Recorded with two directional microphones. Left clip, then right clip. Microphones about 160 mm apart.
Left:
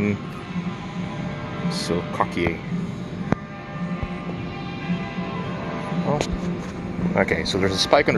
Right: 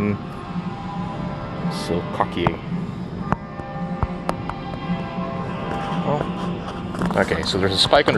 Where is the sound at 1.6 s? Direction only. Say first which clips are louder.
Even; 5° left (ahead or behind).